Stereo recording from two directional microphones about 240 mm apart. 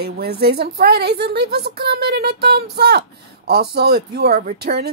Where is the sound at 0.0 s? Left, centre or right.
Right.